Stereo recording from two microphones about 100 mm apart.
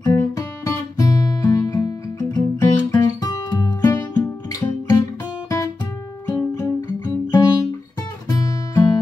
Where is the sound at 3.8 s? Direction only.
30° left (ahead or behind).